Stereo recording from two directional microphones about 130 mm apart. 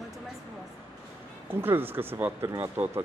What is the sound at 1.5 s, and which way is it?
Speech, 15° right (ahead or behind).